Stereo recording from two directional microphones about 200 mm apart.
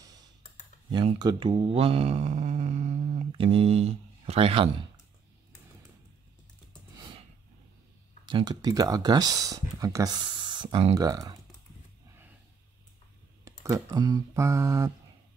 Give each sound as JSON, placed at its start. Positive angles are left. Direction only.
{"t": 0.9, "sound": "speech", "side_deg": -25}
{"t": 7.0, "sound": "a sound", "side_deg": -25}
{"t": 8.3, "sound": "speech", "side_deg": -20}
{"t": 13.4, "sound": "speech", "side_deg": -15}